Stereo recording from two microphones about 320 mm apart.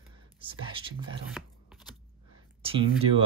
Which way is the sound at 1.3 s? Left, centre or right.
Centre.